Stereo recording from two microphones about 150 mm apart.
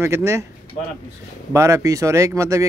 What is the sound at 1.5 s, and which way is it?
Speech, 20° right (ahead or behind).